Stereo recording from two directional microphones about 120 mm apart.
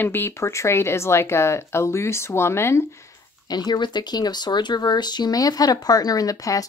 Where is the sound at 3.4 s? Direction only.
35° left (ahead or behind).